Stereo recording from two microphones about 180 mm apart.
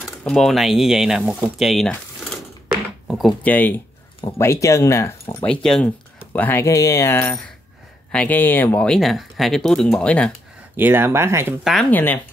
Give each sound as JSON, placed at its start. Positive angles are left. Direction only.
{"t": 0.0, "sound": "speech", "side_deg": 0}
{"t": 10.8, "sound": "speech", "side_deg": -10}
{"t": 11.6, "sound": "speech", "side_deg": 5}